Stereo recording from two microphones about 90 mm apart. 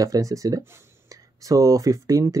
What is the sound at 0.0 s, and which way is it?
Speech, 40° right (ahead or behind).